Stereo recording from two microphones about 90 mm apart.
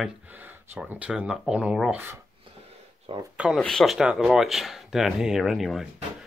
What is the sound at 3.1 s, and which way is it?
Speech, 90° right.